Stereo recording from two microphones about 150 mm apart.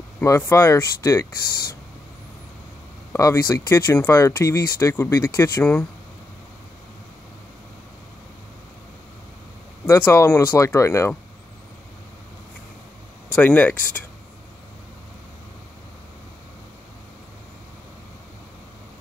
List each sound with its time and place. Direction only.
0.2 s speech: 20° left (ahead or behind)
3.1 s speech: 20° left (ahead or behind)
9.8 s speech: 15° left (ahead or behind)
13.4 s speech: 10° left (ahead or behind)